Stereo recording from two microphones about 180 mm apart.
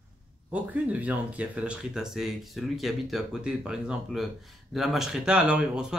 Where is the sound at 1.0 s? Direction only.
10° right (ahead or behind).